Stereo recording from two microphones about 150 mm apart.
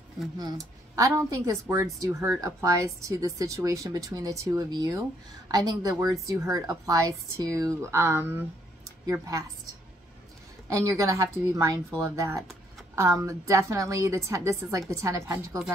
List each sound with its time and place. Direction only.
0.4 s speech: 25° right (ahead or behind)
10.7 s speech: 20° right (ahead or behind)